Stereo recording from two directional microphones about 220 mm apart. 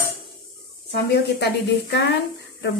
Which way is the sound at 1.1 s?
50° left (ahead or behind).